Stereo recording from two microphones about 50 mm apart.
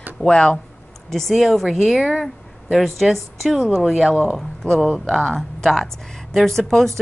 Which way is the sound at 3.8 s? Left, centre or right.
Centre.